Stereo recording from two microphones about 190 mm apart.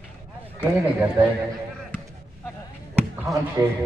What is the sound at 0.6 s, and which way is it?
Speech, 10° right (ahead or behind).